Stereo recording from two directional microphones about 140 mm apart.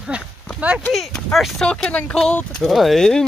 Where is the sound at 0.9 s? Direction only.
Centre (ahead or behind).